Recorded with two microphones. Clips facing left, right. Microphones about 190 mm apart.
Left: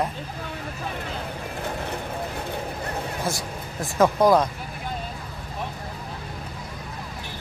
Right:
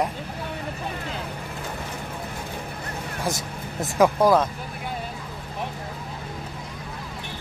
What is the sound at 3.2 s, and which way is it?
Speech, 20° right (ahead or behind).